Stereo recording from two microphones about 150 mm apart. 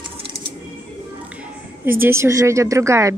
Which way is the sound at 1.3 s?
10° right (ahead or behind).